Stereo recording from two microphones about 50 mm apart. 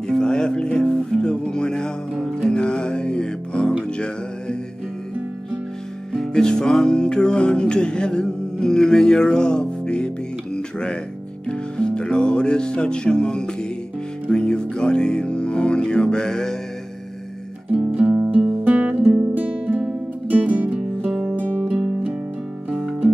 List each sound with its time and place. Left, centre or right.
0.2 s music: centre
6.1 s music: centre
18.1 s music: centre
21.0 s music: centre
21.4 s music: left
21.6 s music: centre
22.7 s music: centre